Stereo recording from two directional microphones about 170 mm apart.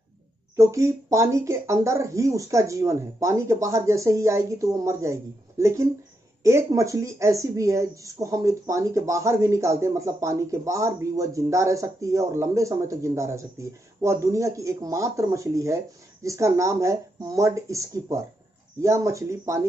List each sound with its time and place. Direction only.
0.6 s speech: 15° right (ahead or behind)